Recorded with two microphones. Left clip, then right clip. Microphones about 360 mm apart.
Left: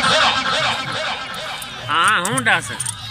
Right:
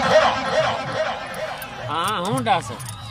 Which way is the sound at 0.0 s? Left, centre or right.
Right.